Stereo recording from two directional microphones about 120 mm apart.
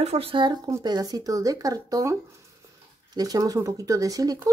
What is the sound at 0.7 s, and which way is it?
Speech, 30° right (ahead or behind).